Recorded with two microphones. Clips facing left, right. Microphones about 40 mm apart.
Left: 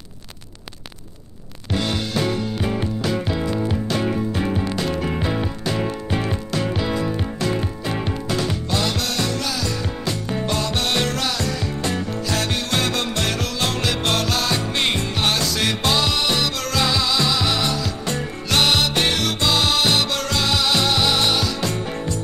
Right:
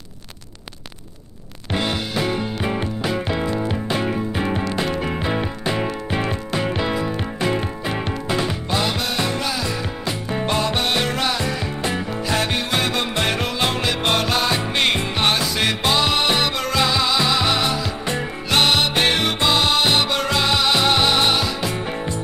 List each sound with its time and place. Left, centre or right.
1.7 s music: right